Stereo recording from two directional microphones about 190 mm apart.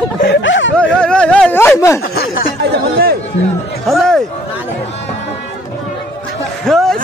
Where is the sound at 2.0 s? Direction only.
50° left (ahead or behind).